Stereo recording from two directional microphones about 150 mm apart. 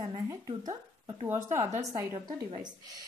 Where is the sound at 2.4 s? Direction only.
45° right (ahead or behind).